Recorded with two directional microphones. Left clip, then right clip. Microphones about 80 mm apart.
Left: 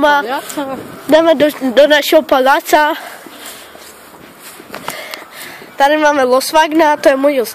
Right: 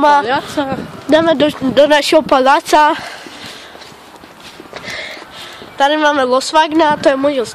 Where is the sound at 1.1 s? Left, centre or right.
Centre.